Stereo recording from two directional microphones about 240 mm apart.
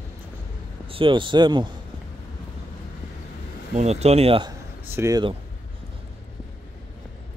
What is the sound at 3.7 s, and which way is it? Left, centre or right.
Speech, right.